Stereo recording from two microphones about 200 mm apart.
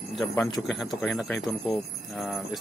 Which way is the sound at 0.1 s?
Centre (ahead or behind).